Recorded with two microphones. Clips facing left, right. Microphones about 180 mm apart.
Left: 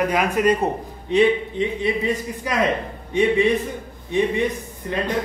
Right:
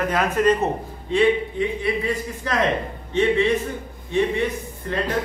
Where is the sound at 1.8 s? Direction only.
20° left (ahead or behind).